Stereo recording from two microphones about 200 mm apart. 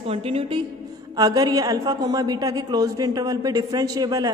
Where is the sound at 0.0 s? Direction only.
30° right (ahead or behind).